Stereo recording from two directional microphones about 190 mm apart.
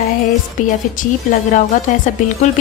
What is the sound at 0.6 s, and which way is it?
A woman's voice, 45° left (ahead or behind).